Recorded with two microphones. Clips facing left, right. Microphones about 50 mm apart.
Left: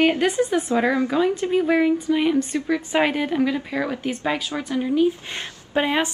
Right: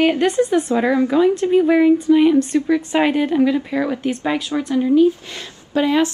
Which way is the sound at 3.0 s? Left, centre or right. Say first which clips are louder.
Right 5 dB; centre.